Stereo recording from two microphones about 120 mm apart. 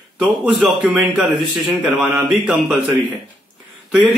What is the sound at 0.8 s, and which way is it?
Speech, 15° right (ahead or behind).